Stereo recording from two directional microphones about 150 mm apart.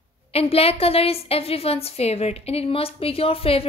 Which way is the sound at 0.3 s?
40° left (ahead or behind).